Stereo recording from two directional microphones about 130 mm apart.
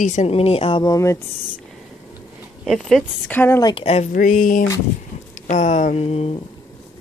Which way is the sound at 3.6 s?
50° left (ahead or behind).